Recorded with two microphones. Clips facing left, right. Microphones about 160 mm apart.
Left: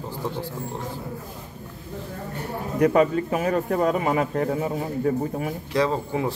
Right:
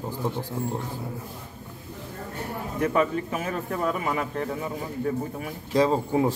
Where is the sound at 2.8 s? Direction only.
40° left (ahead or behind).